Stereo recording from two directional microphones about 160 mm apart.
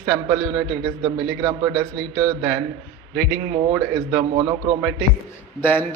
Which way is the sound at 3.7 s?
30° right (ahead or behind).